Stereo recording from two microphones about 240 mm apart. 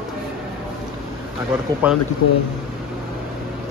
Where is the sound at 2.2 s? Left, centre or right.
Left.